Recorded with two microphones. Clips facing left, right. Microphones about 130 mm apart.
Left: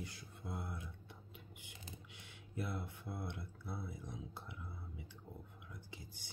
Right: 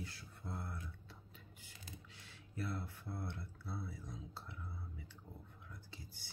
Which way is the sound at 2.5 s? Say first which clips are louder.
Even; 20° left (ahead or behind).